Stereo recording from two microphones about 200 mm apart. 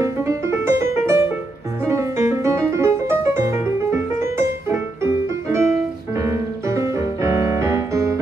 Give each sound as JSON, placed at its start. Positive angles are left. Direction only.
{"t": 0.0, "sound": "music", "side_deg": -15}
{"t": 6.7, "sound": "music", "side_deg": -15}